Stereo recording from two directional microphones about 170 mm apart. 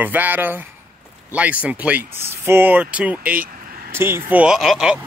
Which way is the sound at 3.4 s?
55° right (ahead or behind).